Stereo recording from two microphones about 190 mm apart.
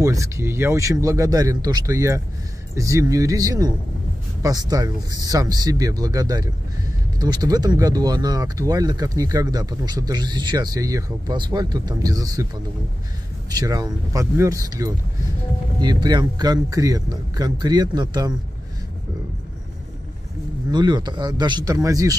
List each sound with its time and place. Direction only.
0.0 s speech: 15° right (ahead or behind)
13.5 s speech: 20° right (ahead or behind)
20.7 s speech: 20° right (ahead or behind)